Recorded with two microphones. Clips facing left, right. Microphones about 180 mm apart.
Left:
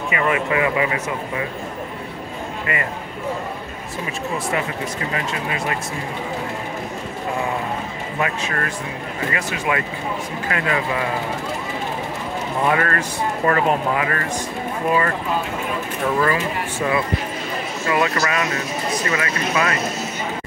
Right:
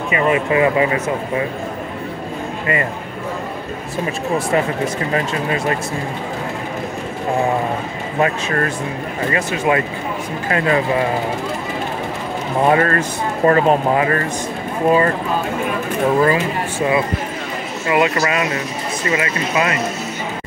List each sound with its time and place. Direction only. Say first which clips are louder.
0.1 s speech: right 4 dB; 25° right (ahead or behind)
2.6 s a man's voice: right 5 dB; 30° right (ahead or behind)
5.1 s speech: right 6 dB; 35° right (ahead or behind)
8.2 s speech: right 6 dB; 35° right (ahead or behind)
12.6 s speech: right 6 dB; 30° right (ahead or behind)
17.8 s speech: right 4 dB; 20° right (ahead or behind)